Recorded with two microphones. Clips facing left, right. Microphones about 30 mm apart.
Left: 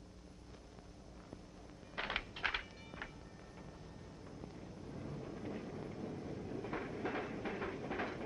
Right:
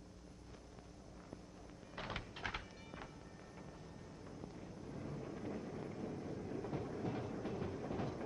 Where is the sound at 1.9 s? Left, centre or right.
Left.